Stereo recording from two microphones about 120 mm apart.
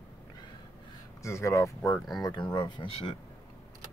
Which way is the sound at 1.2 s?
25° left (ahead or behind).